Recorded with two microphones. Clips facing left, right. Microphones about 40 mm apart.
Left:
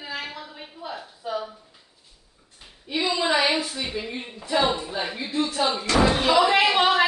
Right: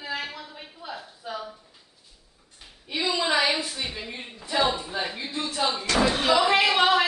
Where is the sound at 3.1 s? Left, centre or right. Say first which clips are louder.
Left 1 dB; left.